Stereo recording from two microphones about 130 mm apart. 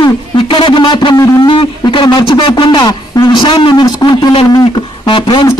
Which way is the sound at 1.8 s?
40° left (ahead or behind).